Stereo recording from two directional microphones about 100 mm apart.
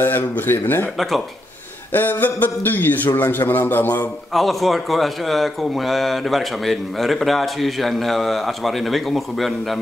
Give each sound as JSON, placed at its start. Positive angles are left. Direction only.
{"t": 0.0, "sound": "speech", "side_deg": 20}
{"t": 1.9, "sound": "speech", "side_deg": 20}
{"t": 4.3, "sound": "speech", "side_deg": 0}